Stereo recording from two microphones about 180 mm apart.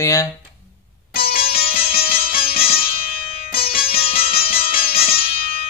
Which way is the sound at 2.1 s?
30° left (ahead or behind).